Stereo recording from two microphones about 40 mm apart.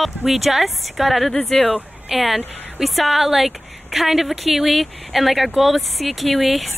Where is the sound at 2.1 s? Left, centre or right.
Centre.